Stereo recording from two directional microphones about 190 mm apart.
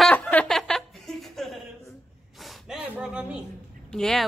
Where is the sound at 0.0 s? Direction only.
5° left (ahead or behind).